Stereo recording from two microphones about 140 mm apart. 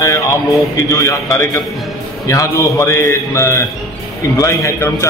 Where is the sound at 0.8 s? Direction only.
25° left (ahead or behind).